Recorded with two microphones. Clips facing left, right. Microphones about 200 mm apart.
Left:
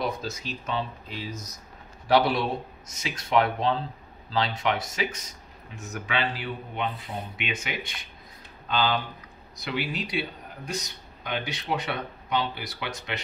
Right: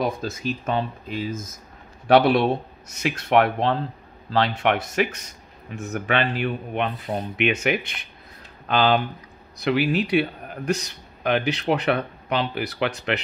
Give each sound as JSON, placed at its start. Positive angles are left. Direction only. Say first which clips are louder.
{"t": 0.0, "sound": "speech", "louder": "right 5 dB", "side_deg": -50}
{"t": 2.0, "sound": "a man's voice", "louder": "right 6 dB", "side_deg": -65}